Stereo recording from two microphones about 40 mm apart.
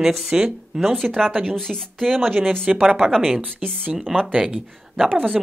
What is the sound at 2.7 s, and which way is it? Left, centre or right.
Speech, centre.